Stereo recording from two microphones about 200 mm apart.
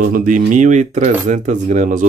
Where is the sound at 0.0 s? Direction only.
40° right (ahead or behind).